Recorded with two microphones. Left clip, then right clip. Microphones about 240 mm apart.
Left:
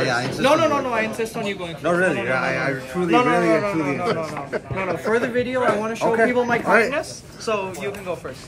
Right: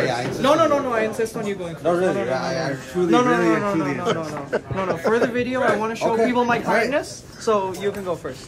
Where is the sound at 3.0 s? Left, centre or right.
Right.